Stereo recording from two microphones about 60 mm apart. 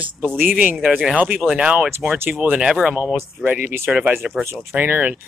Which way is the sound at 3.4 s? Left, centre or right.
Right.